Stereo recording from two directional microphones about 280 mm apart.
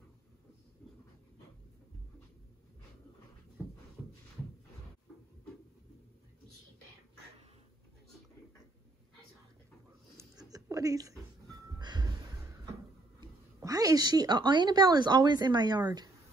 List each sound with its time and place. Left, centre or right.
10.1 s a sound: centre
11.8 s music: centre
13.2 s a woman's voice: centre